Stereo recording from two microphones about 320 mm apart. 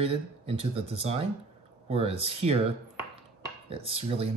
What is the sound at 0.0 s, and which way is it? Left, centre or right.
Speech, centre.